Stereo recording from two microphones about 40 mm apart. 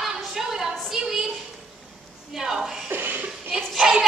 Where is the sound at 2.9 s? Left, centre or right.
Right.